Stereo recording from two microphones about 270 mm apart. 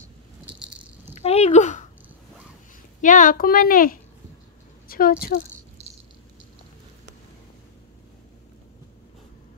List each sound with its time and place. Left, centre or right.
0.5 s rattle: centre
1.1 s speech: left
3.0 s a child's voice: left
5.8 s rattle: right